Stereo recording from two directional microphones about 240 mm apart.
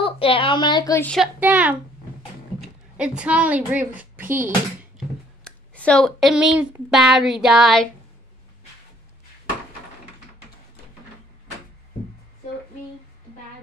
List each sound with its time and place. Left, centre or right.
0.0 s a woman's voice: left
1.1 s a woman's voice: centre
4.9 s speech: centre